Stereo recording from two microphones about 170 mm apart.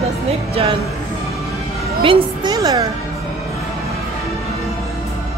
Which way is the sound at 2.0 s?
30° right (ahead or behind).